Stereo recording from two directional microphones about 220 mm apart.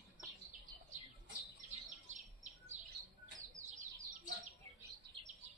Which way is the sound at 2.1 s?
35° right (ahead or behind).